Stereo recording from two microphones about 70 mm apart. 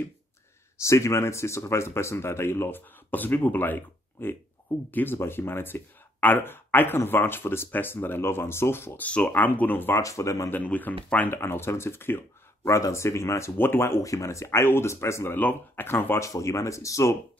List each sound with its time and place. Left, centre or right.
0.8 s speech: left
9.0 s speech: centre
9.9 s speech: left
10.5 s speech: left
11.2 s speech: left
12.7 s speech: left
14.0 s speech: left
15.3 s speech: left
16.2 s speech: left